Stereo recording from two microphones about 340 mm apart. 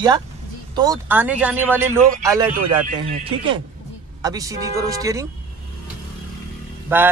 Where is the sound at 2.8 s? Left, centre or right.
Centre.